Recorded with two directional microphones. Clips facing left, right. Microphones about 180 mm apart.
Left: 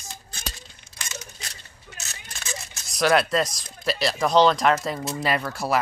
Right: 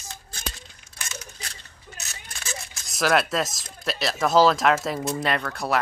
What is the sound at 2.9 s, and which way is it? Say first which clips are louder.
Speech: left 2 dB; centre (ahead or behind).